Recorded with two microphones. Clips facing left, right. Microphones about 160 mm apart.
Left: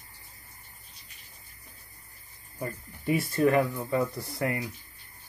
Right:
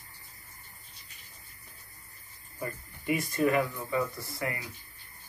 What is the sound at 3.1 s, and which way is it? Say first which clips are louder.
Speech: left 3 dB; 40° left (ahead or behind).